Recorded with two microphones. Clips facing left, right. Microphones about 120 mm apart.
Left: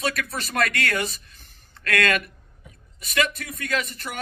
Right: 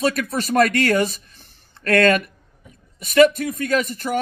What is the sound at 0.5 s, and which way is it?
Speech, 40° right (ahead or behind).